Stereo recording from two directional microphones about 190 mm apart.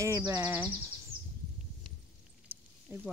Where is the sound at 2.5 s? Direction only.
10° right (ahead or behind).